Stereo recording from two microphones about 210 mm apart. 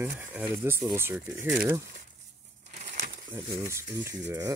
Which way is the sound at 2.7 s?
35° right (ahead or behind).